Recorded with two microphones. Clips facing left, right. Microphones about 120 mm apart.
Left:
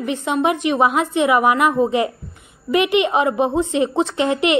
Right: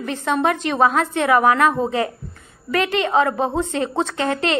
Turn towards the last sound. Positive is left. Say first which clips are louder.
# left 3 dB
turn(degrees=15)  # may be behind; listen again after turning